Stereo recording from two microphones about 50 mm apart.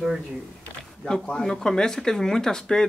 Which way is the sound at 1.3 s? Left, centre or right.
Centre.